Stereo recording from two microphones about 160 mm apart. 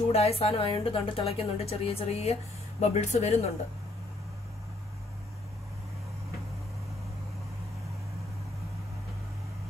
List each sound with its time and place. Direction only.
0.1 s speech: 40° left (ahead or behind)